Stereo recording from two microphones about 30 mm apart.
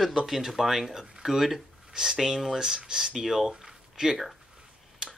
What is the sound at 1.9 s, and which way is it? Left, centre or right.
Speech, right.